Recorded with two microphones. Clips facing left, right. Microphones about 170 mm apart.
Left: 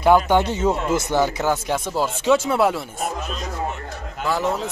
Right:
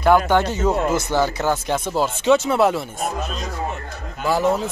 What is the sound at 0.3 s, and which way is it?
A man's voice, 15° left (ahead or behind).